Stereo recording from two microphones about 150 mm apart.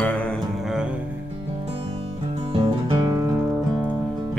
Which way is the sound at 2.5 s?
30° right (ahead or behind).